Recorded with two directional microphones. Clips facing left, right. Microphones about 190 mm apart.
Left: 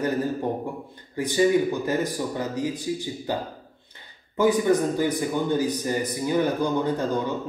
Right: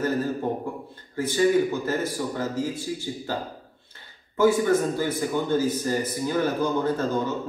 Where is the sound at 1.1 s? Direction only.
15° left (ahead or behind).